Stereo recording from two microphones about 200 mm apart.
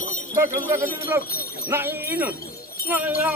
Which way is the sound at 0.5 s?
15° right (ahead or behind).